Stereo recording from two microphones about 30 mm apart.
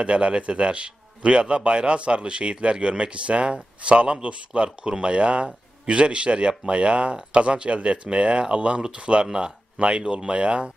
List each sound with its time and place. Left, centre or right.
0.0 s a man's voice: right
4.6 s a man's voice: right